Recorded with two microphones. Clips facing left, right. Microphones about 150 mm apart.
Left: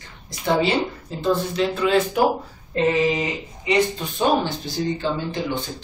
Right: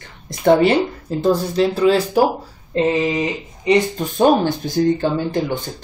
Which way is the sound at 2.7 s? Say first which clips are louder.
Right 3 dB; 30° right (ahead or behind).